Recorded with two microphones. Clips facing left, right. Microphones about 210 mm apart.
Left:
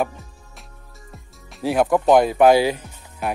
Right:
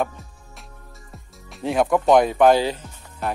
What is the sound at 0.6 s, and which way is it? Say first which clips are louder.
Music: right 2 dB; centre (ahead or behind).